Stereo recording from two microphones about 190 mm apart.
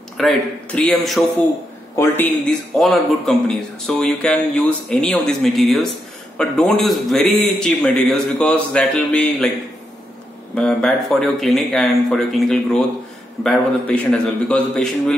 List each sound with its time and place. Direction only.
0.2 s speech: 5° left (ahead or behind)
2.7 s speech: centre (ahead or behind)
10.5 s speech: 5° left (ahead or behind)